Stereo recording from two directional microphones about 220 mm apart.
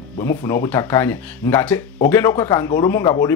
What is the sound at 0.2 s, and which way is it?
Speech, 10° left (ahead or behind).